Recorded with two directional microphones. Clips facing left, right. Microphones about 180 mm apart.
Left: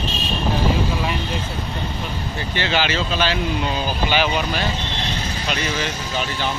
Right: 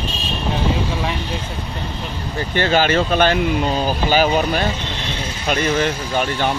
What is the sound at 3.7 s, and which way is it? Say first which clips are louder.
Speech: right 4 dB; 40° right (ahead or behind).